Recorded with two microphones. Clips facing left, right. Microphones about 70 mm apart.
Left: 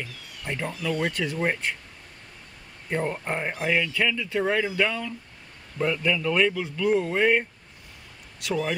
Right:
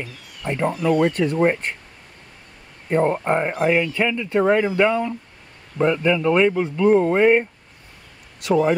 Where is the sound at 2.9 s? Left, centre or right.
Right.